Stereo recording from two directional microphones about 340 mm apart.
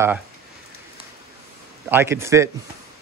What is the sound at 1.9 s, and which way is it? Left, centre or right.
Speech, centre.